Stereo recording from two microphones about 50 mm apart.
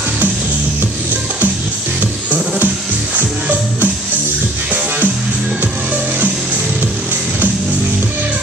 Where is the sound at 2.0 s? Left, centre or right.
Right.